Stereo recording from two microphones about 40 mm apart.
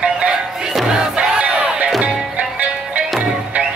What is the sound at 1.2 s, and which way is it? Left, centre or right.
Crowd, right.